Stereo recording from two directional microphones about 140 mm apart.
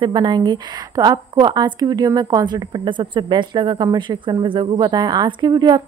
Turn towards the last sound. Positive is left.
turn(degrees=-30)  # may be behind; listen again after turning